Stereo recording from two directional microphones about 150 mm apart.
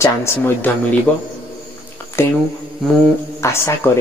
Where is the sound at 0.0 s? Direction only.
20° left (ahead or behind).